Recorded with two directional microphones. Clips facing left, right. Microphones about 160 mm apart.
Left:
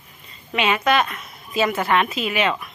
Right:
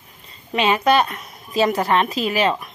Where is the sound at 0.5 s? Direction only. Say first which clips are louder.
Right 3 dB; 35° right (ahead or behind).